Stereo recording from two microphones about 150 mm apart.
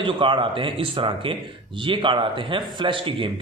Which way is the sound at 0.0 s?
35° right (ahead or behind).